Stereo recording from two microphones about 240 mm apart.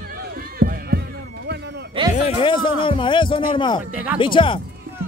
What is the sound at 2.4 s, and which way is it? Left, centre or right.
Speech, left.